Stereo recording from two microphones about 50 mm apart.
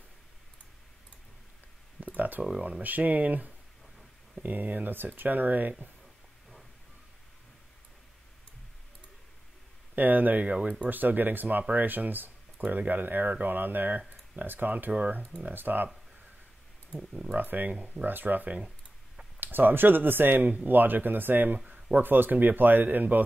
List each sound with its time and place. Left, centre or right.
2.1 s a sound: right
2.8 s speech: right
9.9 s speech: right
10.9 s speech: right
17.1 s speech: centre
17.4 s speech: right